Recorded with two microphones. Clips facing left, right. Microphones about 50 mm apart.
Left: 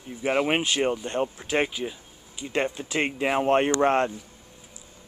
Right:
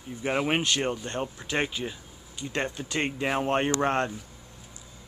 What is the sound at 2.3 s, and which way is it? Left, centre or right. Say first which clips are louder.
Speech: left 4 dB; centre.